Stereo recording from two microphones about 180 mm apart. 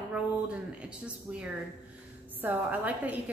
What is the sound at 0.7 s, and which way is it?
A woman's voice, 5° right (ahead or behind).